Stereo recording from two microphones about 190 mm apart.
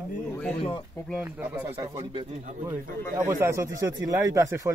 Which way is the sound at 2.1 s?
30° right (ahead or behind).